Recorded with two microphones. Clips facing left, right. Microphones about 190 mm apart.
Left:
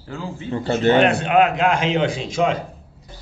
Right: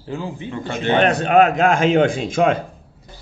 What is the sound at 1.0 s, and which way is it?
Speech, 40° right (ahead or behind).